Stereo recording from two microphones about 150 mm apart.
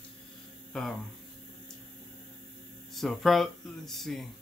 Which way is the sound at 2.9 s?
Centre (ahead or behind).